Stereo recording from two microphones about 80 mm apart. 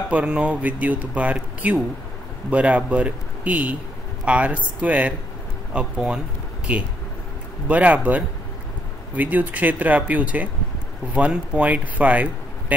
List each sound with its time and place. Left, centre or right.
0.1 s speech: centre